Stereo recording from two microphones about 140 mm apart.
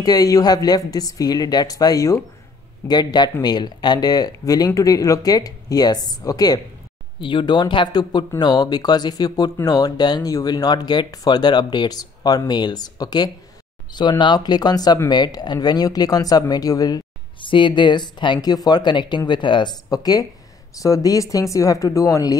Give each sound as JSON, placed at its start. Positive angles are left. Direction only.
{"t": 0.0, "sound": "speech", "side_deg": 25}